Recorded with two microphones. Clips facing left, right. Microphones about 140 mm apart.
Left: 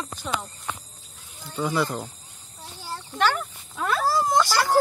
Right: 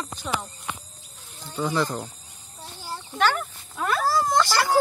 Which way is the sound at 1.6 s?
Centre (ahead or behind).